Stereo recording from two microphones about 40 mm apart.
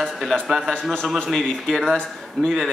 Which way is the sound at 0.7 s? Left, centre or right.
Centre.